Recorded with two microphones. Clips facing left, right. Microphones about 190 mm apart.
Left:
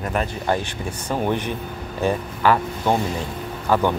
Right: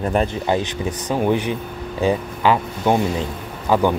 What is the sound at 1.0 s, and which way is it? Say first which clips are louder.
A man's voice: right 3 dB; 10° right (ahead or behind).